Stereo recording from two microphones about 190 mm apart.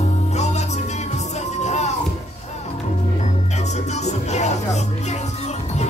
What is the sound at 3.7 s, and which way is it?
Music, 35° left (ahead or behind).